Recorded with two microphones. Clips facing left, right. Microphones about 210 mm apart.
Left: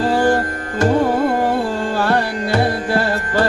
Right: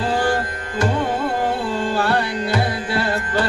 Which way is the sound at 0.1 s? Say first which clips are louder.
Left 5 dB; 45° left (ahead or behind).